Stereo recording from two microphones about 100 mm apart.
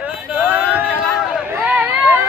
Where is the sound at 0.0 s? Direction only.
15° right (ahead or behind).